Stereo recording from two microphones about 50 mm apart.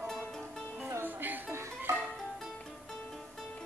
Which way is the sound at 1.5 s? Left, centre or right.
Right.